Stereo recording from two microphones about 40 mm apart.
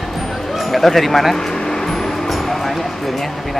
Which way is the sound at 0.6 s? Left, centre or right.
Centre.